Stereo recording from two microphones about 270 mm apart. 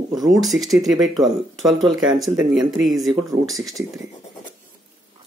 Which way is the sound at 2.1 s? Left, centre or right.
Centre.